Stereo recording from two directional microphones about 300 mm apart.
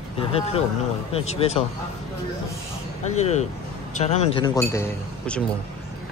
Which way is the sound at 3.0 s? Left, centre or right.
Left.